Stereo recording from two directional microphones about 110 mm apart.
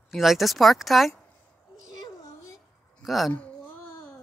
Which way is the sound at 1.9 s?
30° left (ahead or behind).